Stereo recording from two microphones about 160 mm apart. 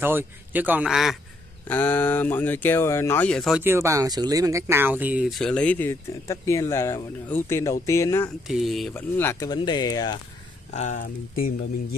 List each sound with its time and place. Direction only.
0.0 s a man's voice: 15° right (ahead or behind)
1.7 s speech: 10° left (ahead or behind)
3.5 s speech: 15° right (ahead or behind); by 8.3 s 20° left (ahead or behind)
8.5 s speech: centre (ahead or behind)
8.9 s speech: 15° left (ahead or behind)
10.7 s speech: 45° left (ahead or behind)